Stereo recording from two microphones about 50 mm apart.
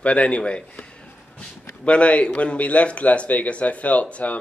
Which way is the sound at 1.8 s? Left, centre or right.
Left.